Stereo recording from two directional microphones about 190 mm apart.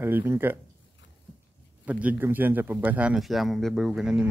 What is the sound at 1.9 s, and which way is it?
Speech, 10° right (ahead or behind).